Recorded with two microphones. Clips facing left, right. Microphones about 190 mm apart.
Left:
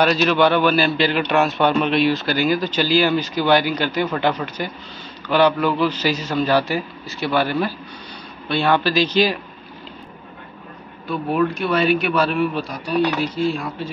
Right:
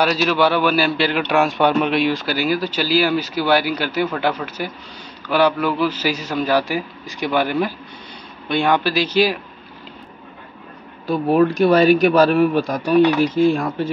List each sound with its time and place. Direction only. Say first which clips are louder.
0.0 s a man's voice: left 1 dB; 5° right (ahead or behind)
1.5 s speech: right 1 dB; 10° right (ahead or behind)
11.1 s speech: right 5 dB; 40° right (ahead or behind)